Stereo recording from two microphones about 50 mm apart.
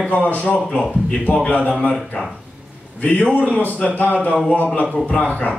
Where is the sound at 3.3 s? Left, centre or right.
Left.